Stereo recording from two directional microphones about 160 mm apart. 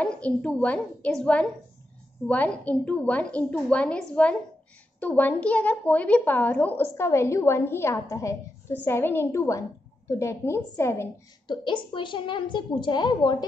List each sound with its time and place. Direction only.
0.0 s a woman's voice: 5° left (ahead or behind)
11.4 s a woman's voice: 30° left (ahead or behind)